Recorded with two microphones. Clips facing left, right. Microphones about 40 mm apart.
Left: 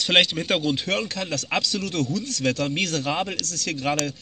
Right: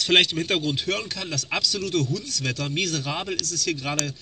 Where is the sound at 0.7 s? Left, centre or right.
Left.